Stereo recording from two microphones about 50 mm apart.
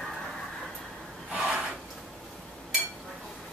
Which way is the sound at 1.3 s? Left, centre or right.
Centre.